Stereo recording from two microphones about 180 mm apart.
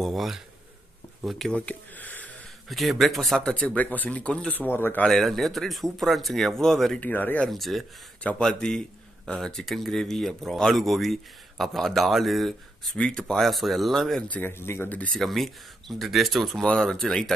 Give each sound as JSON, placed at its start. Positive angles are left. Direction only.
{"t": 0.0, "sound": "speech", "side_deg": 0}